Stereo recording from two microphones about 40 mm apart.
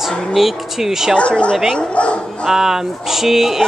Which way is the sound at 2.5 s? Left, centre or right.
Centre.